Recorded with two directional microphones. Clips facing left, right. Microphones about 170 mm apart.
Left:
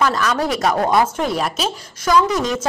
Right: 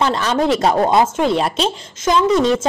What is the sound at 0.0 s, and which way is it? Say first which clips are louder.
A woman's voice: right 2 dB; 30° right (ahead or behind).